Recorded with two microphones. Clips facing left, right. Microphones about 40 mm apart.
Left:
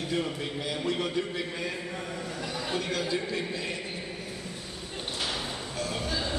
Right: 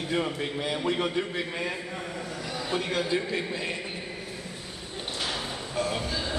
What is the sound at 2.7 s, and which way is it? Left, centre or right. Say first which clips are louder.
A man's voice: right 3 dB; right.